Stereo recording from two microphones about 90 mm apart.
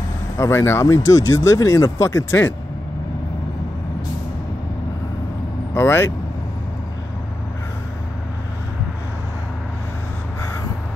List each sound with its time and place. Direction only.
0.4 s speech: 30° left (ahead or behind)
5.8 s speech: 25° left (ahead or behind)